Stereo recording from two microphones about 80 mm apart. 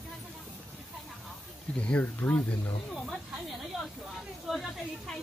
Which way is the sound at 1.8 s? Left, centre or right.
Centre.